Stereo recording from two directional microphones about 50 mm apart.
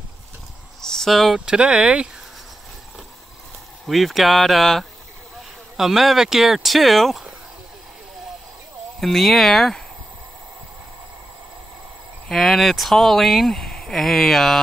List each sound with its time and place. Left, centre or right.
0.7 s a sound: centre
1.4 s speech: centre
3.8 s speech: centre
9.0 s speech: centre
12.3 s speech: centre